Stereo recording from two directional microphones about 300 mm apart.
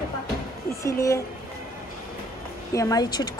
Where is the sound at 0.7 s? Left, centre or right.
Centre.